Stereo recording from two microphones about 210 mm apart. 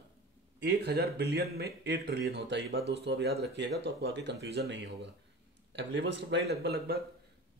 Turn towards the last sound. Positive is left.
turn(degrees=-50)  # may be behind; listen again after turning